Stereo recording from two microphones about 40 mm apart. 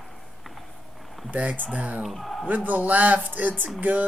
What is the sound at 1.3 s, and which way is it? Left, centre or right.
Speech, right.